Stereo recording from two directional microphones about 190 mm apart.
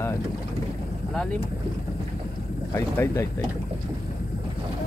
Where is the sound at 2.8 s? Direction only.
10° left (ahead or behind).